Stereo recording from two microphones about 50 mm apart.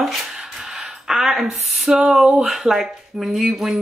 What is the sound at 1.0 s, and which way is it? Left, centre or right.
Speech, centre.